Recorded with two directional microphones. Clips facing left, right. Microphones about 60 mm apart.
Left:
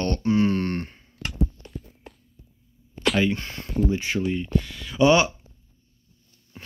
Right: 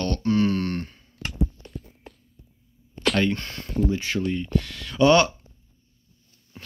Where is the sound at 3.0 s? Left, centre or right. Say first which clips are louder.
Even; centre.